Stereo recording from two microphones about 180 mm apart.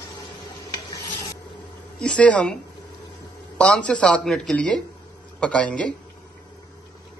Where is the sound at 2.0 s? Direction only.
5° left (ahead or behind).